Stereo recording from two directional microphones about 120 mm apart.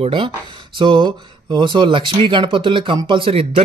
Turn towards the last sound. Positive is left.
turn(degrees=-50)  # may be behind; listen again after turning